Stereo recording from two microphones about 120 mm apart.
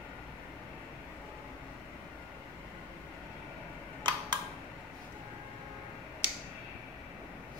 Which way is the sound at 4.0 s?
40° right (ahead or behind).